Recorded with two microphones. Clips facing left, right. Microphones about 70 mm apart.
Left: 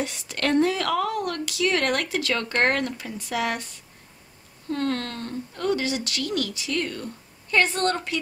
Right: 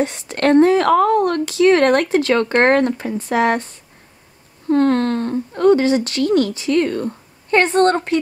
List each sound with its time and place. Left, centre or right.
0.0 s speech: right